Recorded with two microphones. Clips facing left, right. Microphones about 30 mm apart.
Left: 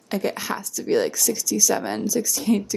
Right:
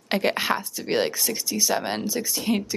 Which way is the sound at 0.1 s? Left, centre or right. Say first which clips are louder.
Right 3 dB; right.